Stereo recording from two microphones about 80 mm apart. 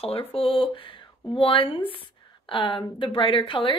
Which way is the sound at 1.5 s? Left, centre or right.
Left.